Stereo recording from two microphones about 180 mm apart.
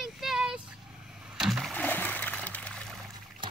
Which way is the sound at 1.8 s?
10° left (ahead or behind).